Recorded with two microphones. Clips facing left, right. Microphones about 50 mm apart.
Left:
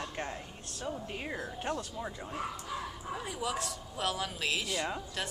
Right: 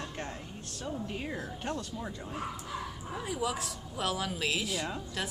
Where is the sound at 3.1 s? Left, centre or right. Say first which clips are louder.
Right 2 dB; centre.